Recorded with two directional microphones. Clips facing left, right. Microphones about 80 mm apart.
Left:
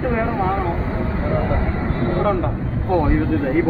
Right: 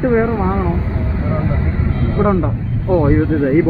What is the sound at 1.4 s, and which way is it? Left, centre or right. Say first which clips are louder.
Speech: right 1 dB; left.